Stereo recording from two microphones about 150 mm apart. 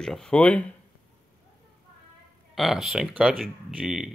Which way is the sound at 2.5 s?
Centre (ahead or behind).